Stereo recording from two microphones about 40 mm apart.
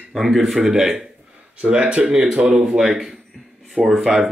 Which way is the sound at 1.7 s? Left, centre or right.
Right.